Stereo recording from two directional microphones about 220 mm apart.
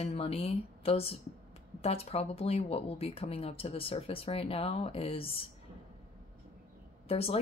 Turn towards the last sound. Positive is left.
turn(degrees=25)  # may be behind; listen again after turning